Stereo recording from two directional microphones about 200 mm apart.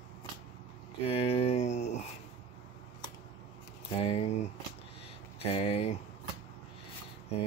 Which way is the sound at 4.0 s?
30° left (ahead or behind).